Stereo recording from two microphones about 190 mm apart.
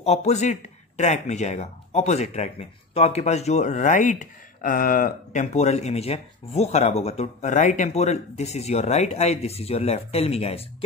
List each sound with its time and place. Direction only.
0.0 s speech: 35° left (ahead or behind)